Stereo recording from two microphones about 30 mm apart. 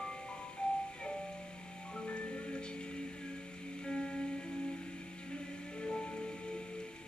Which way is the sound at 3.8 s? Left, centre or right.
Left.